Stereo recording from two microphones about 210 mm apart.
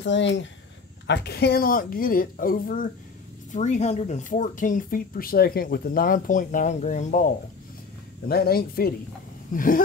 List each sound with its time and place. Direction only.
0.0 s a woman's voice: 60° left (ahead or behind); by 9.8 s 40° left (ahead or behind)